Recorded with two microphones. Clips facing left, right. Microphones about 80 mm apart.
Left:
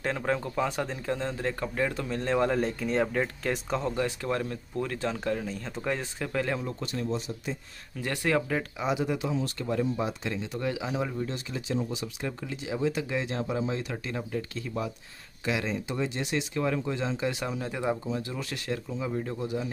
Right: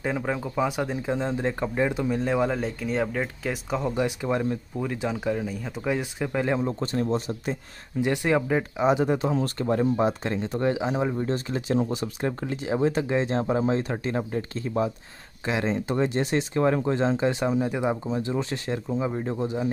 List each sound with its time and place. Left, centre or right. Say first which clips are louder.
0.0 s speech: right 1 dB; centre
3.9 s speech: right 4 dB; centre
6.8 s speech: right 6 dB; right
8.0 s speech: right 5 dB; centre
8.8 s speech: right 8 dB; right